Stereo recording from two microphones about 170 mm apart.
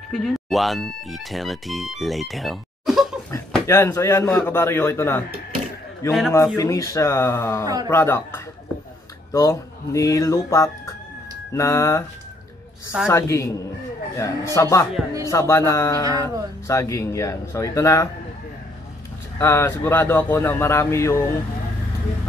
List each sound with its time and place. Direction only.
0.1 s speech: centre (ahead or behind)
3.3 s speech: 15° left (ahead or behind)
6.3 s speech: 20° left (ahead or behind)
7.6 s a sound: 20° right (ahead or behind)
7.9 s speech: 15° left (ahead or behind)
9.3 s fowl: 20° left (ahead or behind)
11.5 s speech: 15° left (ahead or behind)
13.1 s speech: 15° left (ahead or behind)
16.1 s a sound: 20° right (ahead or behind)
16.6 s fowl: 20° left (ahead or behind)
19.3 s speech: 15° left (ahead or behind)